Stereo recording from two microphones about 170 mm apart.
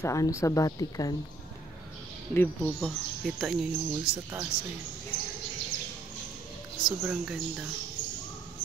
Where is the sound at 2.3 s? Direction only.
10° left (ahead or behind).